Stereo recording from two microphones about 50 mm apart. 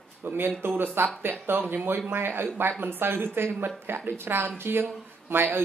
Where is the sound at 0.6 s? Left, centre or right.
Right.